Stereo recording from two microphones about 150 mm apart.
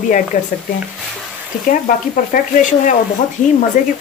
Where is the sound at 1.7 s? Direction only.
65° left (ahead or behind).